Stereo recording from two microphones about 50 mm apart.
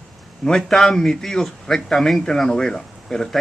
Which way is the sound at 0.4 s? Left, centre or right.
Centre.